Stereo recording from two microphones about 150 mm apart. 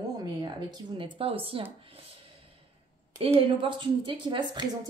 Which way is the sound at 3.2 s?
35° right (ahead or behind).